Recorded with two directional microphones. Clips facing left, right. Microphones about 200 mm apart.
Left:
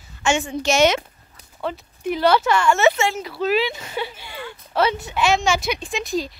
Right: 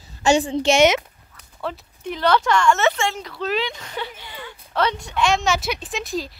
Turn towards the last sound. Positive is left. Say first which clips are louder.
# left 3 dB
turn(degrees=0)  # may be behind; listen again after turning